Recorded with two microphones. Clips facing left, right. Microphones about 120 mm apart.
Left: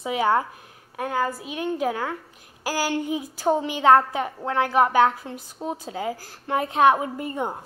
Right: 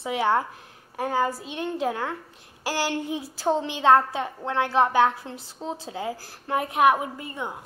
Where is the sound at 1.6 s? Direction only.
10° left (ahead or behind); by 7.1 s 25° left (ahead or behind).